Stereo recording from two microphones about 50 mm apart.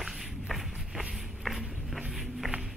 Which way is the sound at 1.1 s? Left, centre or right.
Centre.